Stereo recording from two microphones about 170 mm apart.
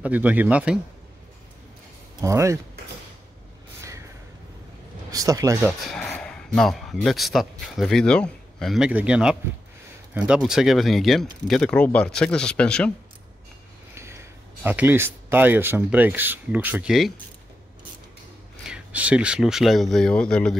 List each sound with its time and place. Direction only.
0.0 s speech: 10° right (ahead or behind)
2.2 s speech: 15° right (ahead or behind)
5.1 s speech: 20° right (ahead or behind)
5.9 s speech: 5° left (ahead or behind)
13.9 s speech: 15° right (ahead or behind)
18.7 s speech: 10° right (ahead or behind)